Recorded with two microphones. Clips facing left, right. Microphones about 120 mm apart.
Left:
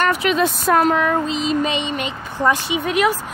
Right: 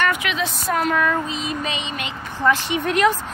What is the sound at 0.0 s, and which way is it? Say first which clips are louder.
Speech: left 5 dB; 40° left (ahead or behind).